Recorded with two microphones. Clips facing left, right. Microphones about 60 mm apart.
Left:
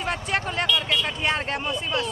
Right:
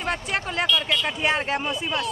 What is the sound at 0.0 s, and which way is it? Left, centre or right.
Speech, centre.